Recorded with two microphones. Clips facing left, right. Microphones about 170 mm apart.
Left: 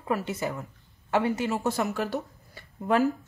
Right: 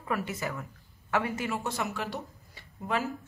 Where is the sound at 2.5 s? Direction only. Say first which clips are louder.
Left 7 dB; 50° left (ahead or behind).